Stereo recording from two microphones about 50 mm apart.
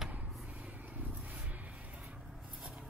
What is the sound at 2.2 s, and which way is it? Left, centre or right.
Rub, centre.